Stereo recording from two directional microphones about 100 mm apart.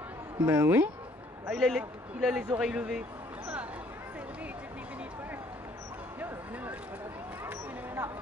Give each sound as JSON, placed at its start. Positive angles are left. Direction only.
{"t": 0.4, "sound": "speech", "side_deg": -25}
{"t": 1.5, "sound": "a man's voice", "side_deg": -5}
{"t": 7.4, "sound": "a sound", "side_deg": -20}